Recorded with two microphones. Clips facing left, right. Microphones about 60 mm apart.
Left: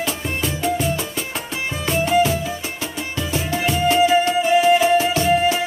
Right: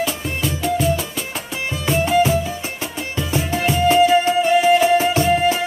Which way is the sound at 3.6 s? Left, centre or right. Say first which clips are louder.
Right 2 dB; centre.